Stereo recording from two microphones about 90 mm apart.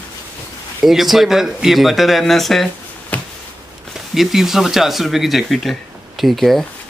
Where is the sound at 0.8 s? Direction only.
Centre (ahead or behind).